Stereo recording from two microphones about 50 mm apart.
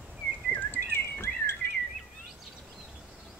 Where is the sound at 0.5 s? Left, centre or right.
Left.